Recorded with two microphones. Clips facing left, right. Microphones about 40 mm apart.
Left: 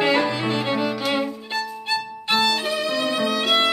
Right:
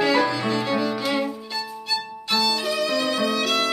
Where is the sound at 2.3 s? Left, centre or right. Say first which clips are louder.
Left 2 dB; left.